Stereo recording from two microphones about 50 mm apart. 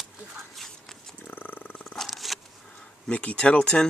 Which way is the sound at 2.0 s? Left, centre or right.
Centre.